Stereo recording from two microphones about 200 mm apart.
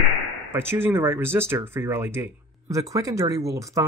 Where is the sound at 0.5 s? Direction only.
10° right (ahead or behind).